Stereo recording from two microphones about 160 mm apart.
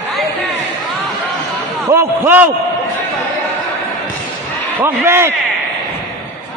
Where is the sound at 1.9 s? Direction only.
15° right (ahead or behind).